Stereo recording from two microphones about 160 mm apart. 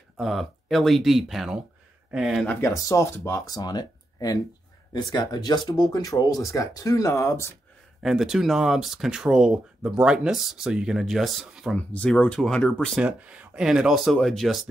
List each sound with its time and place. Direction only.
0.2 s speech: centre (ahead or behind)
2.7 s speech: 20° left (ahead or behind)
8.0 s speech: centre (ahead or behind)
13.0 s speech: 5° right (ahead or behind)